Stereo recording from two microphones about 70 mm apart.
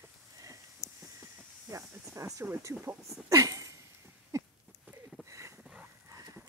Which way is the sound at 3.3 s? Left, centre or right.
Right.